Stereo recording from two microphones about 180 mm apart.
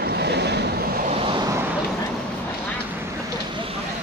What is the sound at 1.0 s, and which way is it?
Vehicle, 30° right (ahead or behind).